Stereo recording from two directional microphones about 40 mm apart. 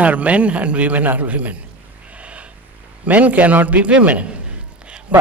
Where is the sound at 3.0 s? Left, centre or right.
Right.